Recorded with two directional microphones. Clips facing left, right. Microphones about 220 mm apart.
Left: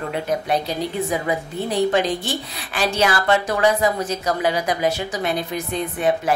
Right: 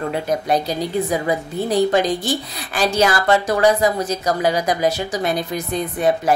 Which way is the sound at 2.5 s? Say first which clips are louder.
Right 2 dB; 40° right (ahead or behind).